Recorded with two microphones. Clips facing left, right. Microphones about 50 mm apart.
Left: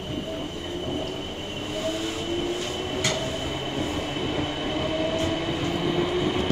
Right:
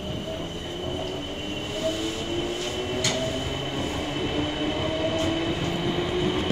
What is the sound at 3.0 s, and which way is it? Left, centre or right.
Train, centre.